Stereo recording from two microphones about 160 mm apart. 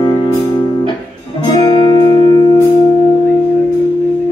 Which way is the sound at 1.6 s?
25° left (ahead or behind).